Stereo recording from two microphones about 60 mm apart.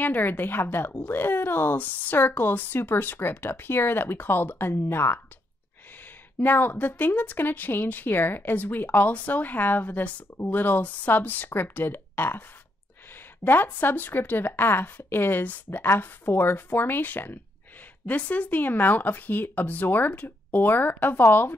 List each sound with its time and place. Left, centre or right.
0.0 s speech: left
6.4 s speech: left